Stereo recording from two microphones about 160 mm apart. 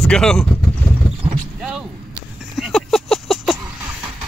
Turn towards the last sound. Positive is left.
turn(degrees=0)  # may be behind; listen again after turning